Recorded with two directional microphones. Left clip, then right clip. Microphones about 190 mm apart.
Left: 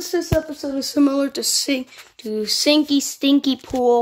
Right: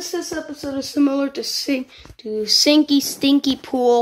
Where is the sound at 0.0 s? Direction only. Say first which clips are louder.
Left 5 dB; 30° left (ahead or behind).